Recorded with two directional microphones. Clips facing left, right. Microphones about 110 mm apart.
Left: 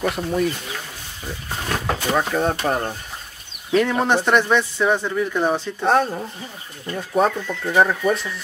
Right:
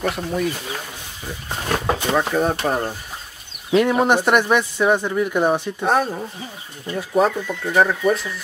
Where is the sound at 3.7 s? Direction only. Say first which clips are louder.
Right 2 dB; 15° right (ahead or behind).